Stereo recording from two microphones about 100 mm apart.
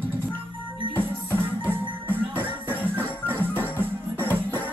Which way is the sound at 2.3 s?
20° right (ahead or behind).